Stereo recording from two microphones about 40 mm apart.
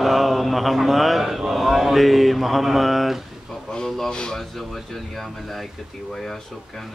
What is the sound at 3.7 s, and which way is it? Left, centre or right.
Speech, centre.